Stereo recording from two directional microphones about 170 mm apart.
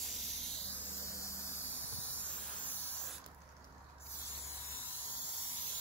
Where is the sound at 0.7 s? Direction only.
15° left (ahead or behind).